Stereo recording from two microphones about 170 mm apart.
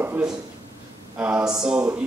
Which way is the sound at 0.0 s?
10° right (ahead or behind).